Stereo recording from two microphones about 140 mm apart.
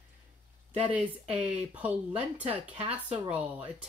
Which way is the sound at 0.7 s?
10° right (ahead or behind).